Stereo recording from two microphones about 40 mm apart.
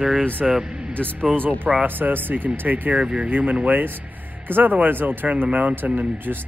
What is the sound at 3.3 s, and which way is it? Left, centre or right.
Speech, right.